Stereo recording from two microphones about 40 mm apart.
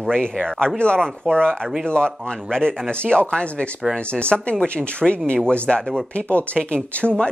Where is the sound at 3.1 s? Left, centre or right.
Left.